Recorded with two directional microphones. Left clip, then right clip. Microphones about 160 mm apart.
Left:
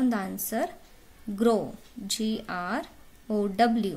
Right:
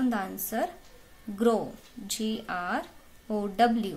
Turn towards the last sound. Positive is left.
turn(degrees=55)  # may be behind; listen again after turning